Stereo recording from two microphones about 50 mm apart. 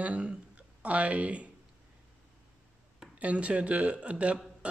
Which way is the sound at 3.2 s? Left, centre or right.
Right.